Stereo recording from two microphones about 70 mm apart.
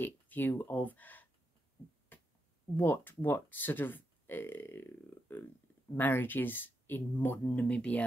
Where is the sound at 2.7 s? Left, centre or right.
Left.